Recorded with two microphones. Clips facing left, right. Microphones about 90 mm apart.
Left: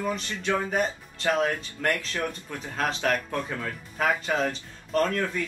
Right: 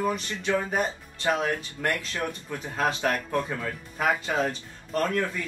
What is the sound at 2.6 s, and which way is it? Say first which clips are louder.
Speech: right 1 dB; 15° right (ahead or behind).